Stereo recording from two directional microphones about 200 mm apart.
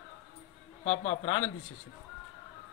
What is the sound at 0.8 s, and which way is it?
Speech, 35° left (ahead or behind).